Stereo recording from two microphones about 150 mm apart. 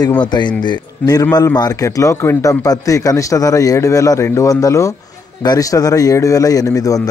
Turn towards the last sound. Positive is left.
turn(degrees=25)  # may be behind; listen again after turning